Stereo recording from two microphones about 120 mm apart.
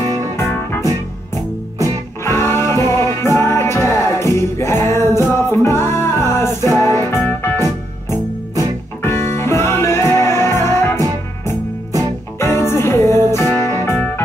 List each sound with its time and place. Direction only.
0.4 s music: 20° left (ahead or behind)
2.2 s music: 20° left (ahead or behind)
12.4 s music: 20° left (ahead or behind)